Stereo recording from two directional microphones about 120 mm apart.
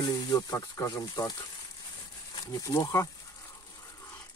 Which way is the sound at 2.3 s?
30° left (ahead or behind).